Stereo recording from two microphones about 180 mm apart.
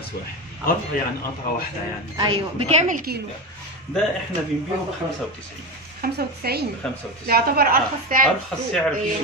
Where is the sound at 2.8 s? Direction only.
45° right (ahead or behind).